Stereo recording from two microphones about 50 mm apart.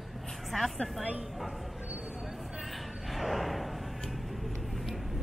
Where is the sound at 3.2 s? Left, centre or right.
Centre.